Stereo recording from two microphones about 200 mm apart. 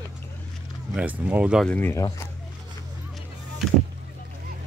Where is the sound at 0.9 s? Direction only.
5° right (ahead or behind).